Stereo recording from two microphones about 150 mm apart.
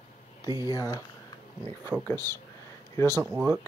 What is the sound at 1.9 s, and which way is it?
Speech, 5° right (ahead or behind).